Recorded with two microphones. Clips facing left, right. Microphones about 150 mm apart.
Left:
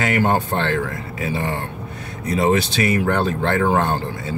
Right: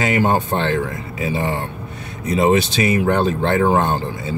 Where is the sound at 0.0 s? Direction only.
20° right (ahead or behind).